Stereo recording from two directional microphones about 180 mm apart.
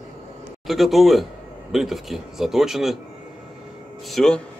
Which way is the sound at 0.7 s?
Centre (ahead or behind).